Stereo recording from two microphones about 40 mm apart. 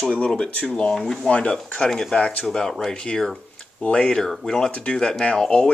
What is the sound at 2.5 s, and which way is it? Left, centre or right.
Speech, centre.